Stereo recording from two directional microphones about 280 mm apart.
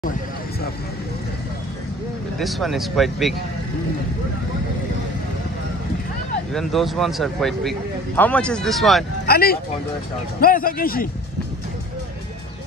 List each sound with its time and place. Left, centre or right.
2.3 s speech: centre
6.5 s speech: centre
9.2 s a man's voice: left